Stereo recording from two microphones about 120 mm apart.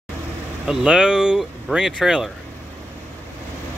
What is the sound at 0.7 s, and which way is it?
Speech, 5° right (ahead or behind).